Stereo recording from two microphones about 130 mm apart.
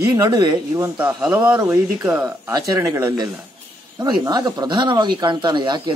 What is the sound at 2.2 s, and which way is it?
Speech, 25° right (ahead or behind).